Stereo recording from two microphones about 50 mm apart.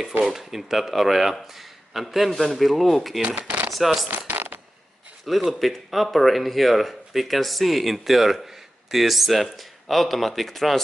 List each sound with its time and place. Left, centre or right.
0.2 s speech: centre
3.3 s speech: right
3.7 s speech: centre
4.3 s coin: right
5.3 s speech: centre